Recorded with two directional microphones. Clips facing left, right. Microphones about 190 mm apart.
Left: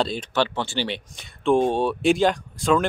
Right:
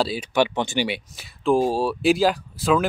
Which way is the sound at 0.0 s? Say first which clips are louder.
Right 2 dB; 10° right (ahead or behind).